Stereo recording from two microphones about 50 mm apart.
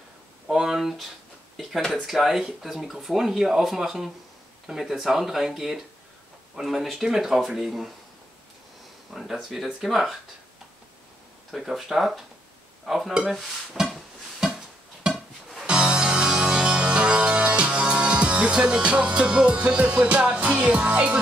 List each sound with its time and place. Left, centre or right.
0.5 s a sound: centre
1.6 s stir: centre
2.6 s speech: centre
9.1 s stir: centre
11.5 s stir: centre
14.4 s music: centre
15.0 s a sound: centre
15.6 s music: centre